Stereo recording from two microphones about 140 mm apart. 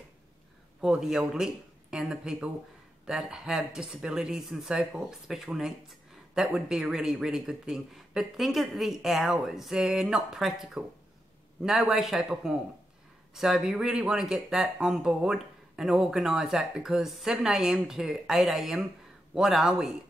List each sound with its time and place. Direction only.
0.7 s speech: 5° right (ahead or behind)